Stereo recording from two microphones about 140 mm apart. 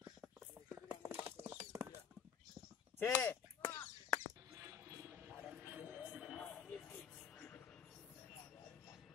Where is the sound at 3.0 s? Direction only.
10° left (ahead or behind).